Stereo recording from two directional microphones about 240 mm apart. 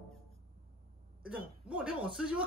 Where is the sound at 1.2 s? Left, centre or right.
Centre.